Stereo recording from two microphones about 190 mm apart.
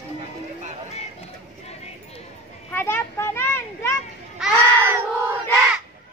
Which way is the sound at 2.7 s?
10° left (ahead or behind).